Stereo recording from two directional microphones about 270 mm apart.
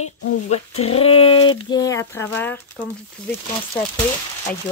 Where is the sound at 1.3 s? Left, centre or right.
Left.